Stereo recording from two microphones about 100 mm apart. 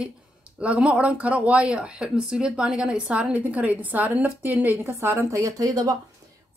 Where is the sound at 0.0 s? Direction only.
10° right (ahead or behind); by 5.9 s 40° right (ahead or behind).